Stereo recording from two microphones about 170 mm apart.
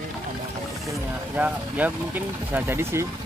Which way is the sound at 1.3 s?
10° right (ahead or behind).